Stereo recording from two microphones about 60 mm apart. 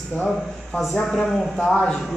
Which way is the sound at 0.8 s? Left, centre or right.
Centre.